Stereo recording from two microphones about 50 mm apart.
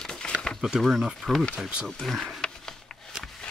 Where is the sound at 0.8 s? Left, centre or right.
Centre.